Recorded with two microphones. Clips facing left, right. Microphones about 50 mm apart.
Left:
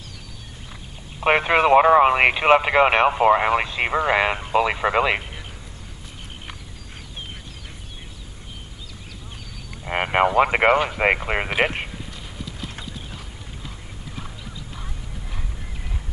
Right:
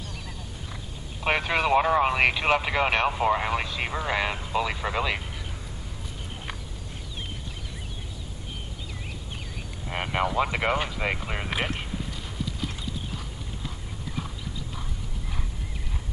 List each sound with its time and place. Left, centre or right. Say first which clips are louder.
1.2 s speech: left 7 dB; left
9.8 s speech: left 8 dB; left
12.1 s clip-clop: right 2 dB; centre